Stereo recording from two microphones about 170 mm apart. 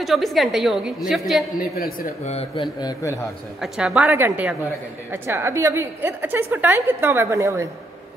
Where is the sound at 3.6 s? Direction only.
5° right (ahead or behind).